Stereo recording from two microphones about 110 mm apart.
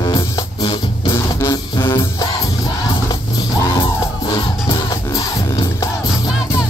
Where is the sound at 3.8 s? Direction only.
50° left (ahead or behind).